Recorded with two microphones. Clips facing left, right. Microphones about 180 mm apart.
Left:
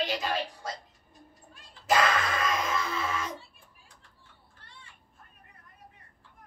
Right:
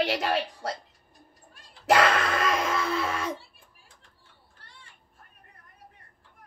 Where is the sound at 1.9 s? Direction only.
70° right (ahead or behind).